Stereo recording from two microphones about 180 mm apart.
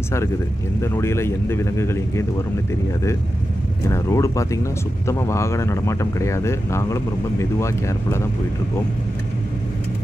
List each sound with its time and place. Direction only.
0.7 s speech: 15° left (ahead or behind)
3.9 s speech: 15° left (ahead or behind)